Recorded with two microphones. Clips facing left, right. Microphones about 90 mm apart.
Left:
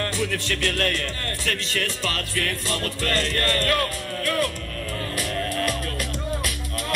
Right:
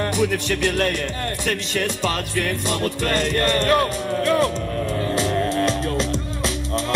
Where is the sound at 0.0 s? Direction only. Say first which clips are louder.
Right 5 dB; 20° right (ahead or behind).